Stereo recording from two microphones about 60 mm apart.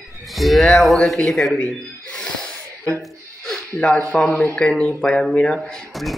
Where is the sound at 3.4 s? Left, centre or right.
Centre.